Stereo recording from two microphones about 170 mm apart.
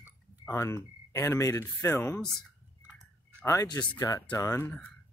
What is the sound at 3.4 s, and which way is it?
Speech, 20° left (ahead or behind).